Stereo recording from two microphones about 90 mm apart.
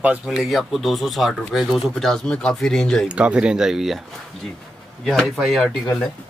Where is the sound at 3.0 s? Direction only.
15° right (ahead or behind).